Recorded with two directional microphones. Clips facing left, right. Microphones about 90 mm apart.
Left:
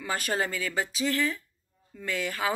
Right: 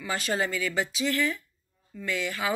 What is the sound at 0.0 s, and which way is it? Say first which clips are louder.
Speech: even; 40° left (ahead or behind).